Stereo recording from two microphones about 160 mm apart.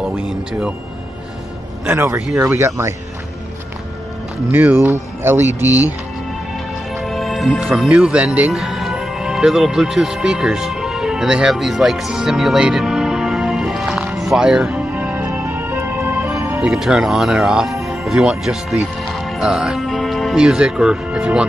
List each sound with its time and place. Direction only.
0.0 s speech: 5° right (ahead or behind)
1.9 s speech: 15° right (ahead or behind)
4.5 s speech: 10° right (ahead or behind)
7.0 s music: centre (ahead or behind); by 16.6 s 20° right (ahead or behind)
16.6 s speech: 5° right (ahead or behind)